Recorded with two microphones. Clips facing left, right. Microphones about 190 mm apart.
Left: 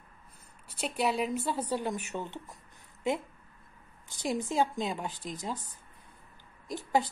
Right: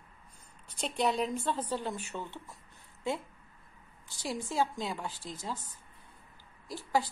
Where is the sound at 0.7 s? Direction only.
5° left (ahead or behind).